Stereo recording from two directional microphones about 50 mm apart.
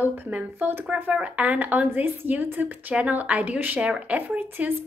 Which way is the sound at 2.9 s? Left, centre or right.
Right.